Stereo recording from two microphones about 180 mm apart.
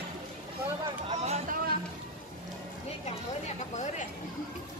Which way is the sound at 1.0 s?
35° right (ahead or behind).